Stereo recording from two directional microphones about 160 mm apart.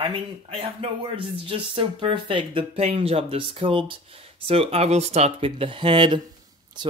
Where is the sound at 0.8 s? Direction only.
35° right (ahead or behind).